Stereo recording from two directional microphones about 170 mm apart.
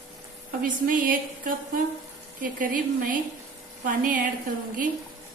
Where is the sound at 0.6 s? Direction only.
55° right (ahead or behind).